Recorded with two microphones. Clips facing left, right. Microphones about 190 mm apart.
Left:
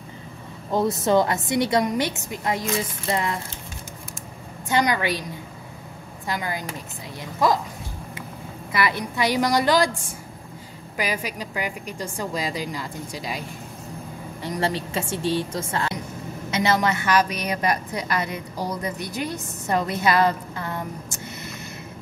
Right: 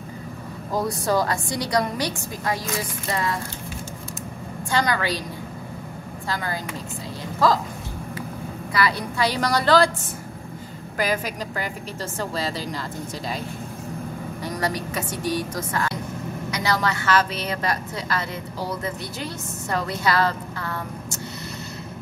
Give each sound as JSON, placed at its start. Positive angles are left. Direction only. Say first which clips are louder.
{"t": 0.7, "sound": "a woman's voice", "louder": "left 3 dB", "side_deg": 25}
{"t": 4.6, "sound": "a woman's voice", "louder": "left 1 dB", "side_deg": 20}
{"t": 6.2, "sound": "a woman's voice", "louder": "even", "side_deg": 15}
{"t": 8.7, "sound": "a woman's voice", "louder": "even", "side_deg": 20}
{"t": 11.0, "sound": "a woman's voice", "louder": "right 3 dB", "side_deg": 10}
{"t": 14.4, "sound": "a woman's voice", "louder": "left 2 dB", "side_deg": 25}